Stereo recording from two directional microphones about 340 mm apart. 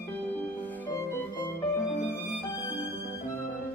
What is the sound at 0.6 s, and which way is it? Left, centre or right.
Music, centre.